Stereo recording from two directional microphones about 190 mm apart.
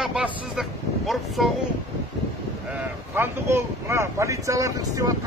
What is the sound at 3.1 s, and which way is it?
Speech, 10° right (ahead or behind).